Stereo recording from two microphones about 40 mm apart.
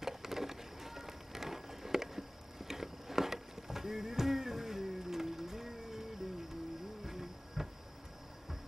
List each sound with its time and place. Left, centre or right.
0.0 s music: centre
7.1 s insect: centre